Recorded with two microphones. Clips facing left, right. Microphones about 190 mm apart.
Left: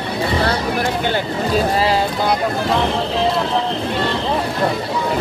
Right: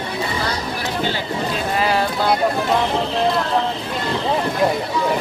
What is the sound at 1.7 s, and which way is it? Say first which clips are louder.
Boat: left 2 dB; 30° left (ahead or behind).